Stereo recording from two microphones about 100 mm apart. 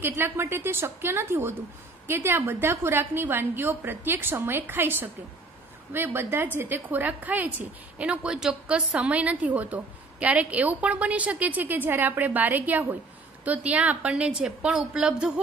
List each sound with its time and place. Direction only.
0.0 s a woman's voice: 25° right (ahead or behind); by 15.4 s 10° right (ahead or behind)